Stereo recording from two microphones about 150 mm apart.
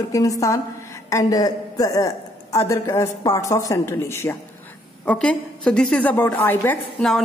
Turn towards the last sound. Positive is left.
turn(degrees=15)  # may be behind; listen again after turning